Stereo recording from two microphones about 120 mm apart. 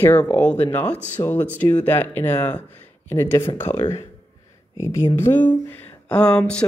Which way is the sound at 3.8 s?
50° left (ahead or behind).